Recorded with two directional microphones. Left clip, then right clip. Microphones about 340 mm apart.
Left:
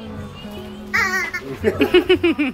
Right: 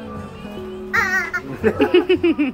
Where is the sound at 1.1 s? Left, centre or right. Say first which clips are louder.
Right 1 dB; centre.